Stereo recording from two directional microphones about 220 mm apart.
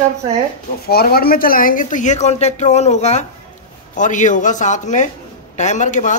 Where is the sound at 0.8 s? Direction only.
45° left (ahead or behind).